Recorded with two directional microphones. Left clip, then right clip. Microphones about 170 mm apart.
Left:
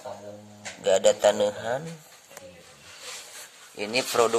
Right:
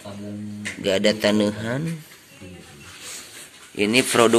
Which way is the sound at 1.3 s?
55° right (ahead or behind).